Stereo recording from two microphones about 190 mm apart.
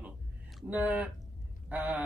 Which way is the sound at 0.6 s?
10° right (ahead or behind).